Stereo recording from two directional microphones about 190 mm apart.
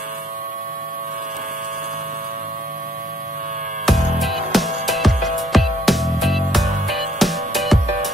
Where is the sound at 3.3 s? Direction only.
45° right (ahead or behind).